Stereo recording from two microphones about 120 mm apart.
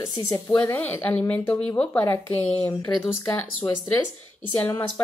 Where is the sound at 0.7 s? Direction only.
15° left (ahead or behind).